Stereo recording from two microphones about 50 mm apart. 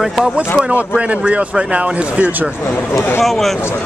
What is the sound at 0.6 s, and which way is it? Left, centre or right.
Speech, right.